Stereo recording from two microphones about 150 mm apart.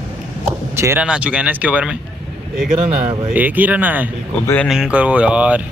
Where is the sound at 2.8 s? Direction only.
45° right (ahead or behind).